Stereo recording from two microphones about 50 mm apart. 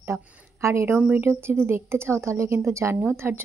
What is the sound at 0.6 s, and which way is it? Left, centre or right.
Speech, right.